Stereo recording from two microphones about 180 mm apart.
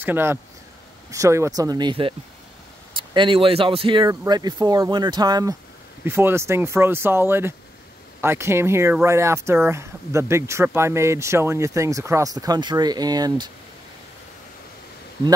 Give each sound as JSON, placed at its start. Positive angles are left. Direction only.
{"t": 0.0, "sound": "speech", "side_deg": -10}